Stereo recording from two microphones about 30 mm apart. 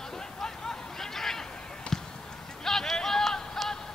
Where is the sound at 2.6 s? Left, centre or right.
Centre.